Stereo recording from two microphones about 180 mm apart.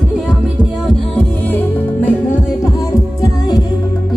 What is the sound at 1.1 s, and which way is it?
Music, 10° left (ahead or behind).